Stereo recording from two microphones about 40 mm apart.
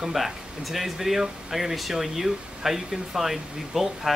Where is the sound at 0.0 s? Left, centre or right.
Centre.